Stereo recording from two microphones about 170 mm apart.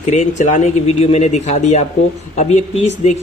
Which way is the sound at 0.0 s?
45° left (ahead or behind).